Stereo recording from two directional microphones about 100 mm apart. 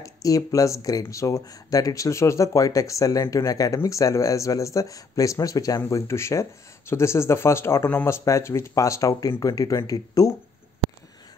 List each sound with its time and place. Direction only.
0.0 s speech: 35° left (ahead or behind)